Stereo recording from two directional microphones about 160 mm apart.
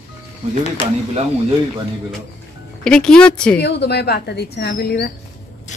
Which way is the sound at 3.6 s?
90° left.